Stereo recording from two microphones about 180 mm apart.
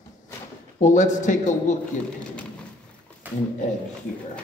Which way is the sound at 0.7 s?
45° left (ahead or behind).